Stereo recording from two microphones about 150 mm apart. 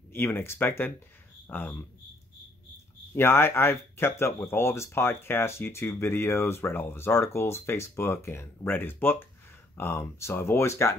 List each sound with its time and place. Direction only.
0.1 s speech: 15° left (ahead or behind)
3.2 s speech: 15° left (ahead or behind)